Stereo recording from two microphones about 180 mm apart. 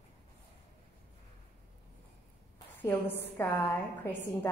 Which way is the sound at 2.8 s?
10° left (ahead or behind).